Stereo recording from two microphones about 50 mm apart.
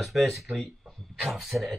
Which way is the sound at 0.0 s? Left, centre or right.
Centre.